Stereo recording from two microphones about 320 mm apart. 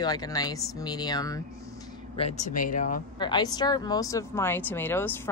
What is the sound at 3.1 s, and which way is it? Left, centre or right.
Speech, centre.